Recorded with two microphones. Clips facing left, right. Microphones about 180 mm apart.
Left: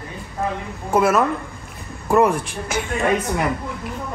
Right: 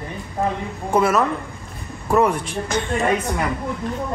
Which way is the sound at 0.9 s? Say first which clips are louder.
Left 1 dB; 5° left (ahead or behind).